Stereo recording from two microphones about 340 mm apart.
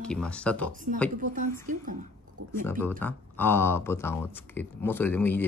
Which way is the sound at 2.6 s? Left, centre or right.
Centre.